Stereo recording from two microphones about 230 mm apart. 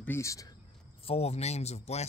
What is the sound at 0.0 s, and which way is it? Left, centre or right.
Speech, centre.